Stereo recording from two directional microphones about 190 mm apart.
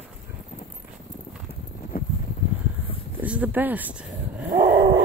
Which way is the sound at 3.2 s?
10° right (ahead or behind).